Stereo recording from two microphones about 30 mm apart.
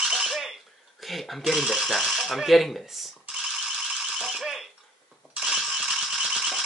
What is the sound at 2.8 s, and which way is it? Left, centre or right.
Speech, centre.